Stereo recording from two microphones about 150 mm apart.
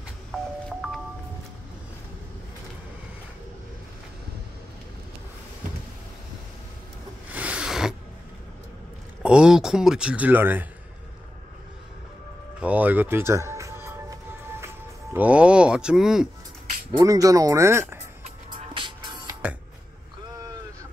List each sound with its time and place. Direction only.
0.3 s music: 5° left (ahead or behind)
7.2 s a sound: 10° right (ahead or behind)
9.2 s speech: 5° right (ahead or behind)
12.5 s speech: 10° right (ahead or behind)
15.1 s speech: 10° right (ahead or behind)
17.0 s speech: 20° right (ahead or behind)
18.2 s music: 35° right (ahead or behind)